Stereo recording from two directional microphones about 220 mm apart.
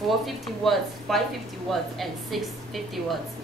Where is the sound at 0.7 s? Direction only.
Centre (ahead or behind).